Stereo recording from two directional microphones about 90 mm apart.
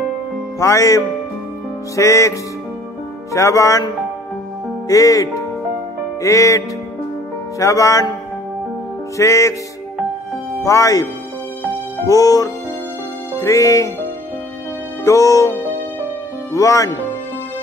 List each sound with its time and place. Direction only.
0.6 s music: 35° left (ahead or behind)
3.3 s music: 35° left (ahead or behind)
4.8 s music: 40° left (ahead or behind)
9.1 s music: 35° left (ahead or behind)
10.6 s music: 40° left (ahead or behind)
12.1 s speech: 40° left (ahead or behind)
13.4 s music: 35° left (ahead or behind)
15.0 s music: 40° left (ahead or behind)
16.5 s music: 35° left (ahead or behind)